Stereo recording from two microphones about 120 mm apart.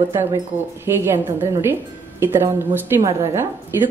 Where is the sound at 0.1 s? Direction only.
20° right (ahead or behind).